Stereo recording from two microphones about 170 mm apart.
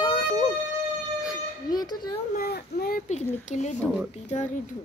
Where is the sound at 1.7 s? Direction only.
25° left (ahead or behind).